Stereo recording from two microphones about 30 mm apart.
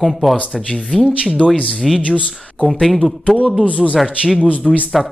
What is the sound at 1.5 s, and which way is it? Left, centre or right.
Speech, left.